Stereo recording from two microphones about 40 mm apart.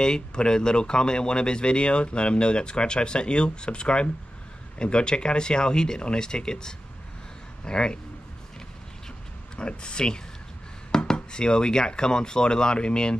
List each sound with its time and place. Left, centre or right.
0.0 s speech: left
9.6 s speech: left
10.9 s a sound: centre
11.1 s speech: left